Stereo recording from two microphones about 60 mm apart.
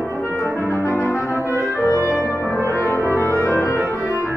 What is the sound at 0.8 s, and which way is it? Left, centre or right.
Brass instrument, left.